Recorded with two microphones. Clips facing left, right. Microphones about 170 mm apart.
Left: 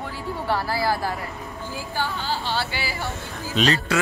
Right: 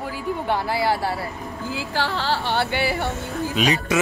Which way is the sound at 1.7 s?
90° right.